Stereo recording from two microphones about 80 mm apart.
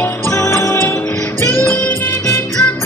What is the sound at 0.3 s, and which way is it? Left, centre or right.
Music, left.